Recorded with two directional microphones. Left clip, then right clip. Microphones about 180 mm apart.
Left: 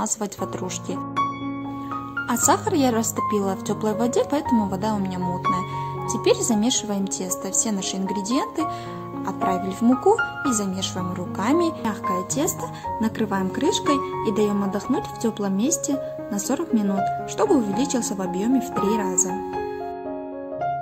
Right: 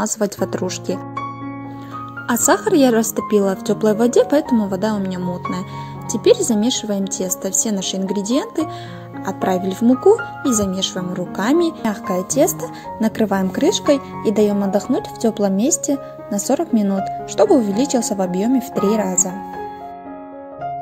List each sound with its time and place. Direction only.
0.0 s speech: 30° right (ahead or behind)
2.2 s speech: 25° right (ahead or behind)